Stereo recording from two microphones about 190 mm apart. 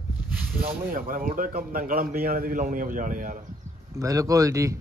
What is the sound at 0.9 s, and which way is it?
A man's voice, 45° right (ahead or behind).